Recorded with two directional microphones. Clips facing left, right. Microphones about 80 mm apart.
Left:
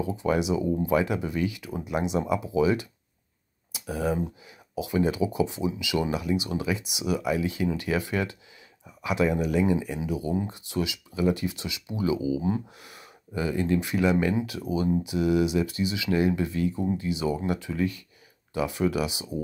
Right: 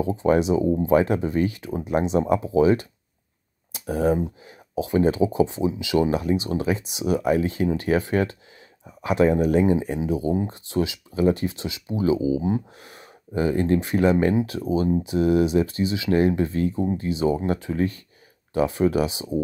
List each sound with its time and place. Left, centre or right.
0.0 s speech: right
12.8 s a sound: right
13.7 s speech: right